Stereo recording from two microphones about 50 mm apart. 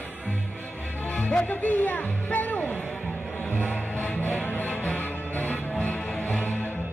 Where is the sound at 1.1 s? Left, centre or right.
Left.